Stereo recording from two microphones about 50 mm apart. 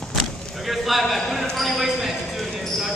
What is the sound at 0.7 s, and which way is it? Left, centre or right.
Clip-clop, centre.